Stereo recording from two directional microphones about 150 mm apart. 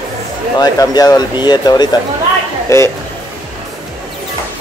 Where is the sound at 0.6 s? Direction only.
25° left (ahead or behind).